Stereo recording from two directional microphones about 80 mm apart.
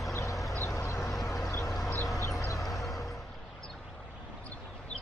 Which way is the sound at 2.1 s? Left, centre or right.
Left.